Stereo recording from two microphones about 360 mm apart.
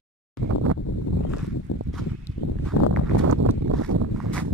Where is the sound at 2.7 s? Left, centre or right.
Left.